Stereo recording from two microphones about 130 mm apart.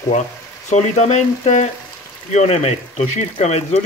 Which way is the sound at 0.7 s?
60° left (ahead or behind).